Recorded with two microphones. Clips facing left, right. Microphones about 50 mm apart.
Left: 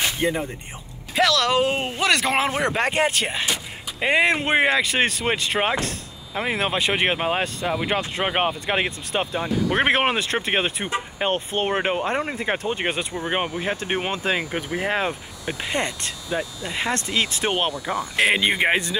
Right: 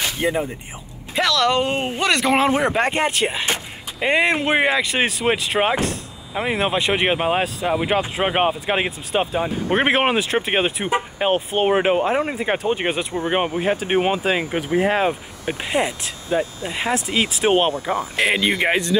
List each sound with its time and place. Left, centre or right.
0.2 s speech: centre
9.5 s speech: right
9.8 s speech: centre
18.1 s speech: centre